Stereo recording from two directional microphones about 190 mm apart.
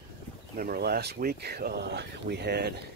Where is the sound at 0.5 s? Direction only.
55° right (ahead or behind).